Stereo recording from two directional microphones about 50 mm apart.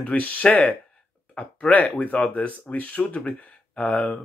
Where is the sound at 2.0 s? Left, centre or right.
Left.